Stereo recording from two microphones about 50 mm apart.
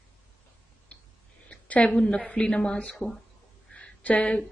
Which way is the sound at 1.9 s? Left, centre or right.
Left.